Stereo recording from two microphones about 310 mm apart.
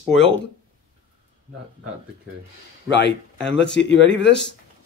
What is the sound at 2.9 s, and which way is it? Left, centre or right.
Speech, left.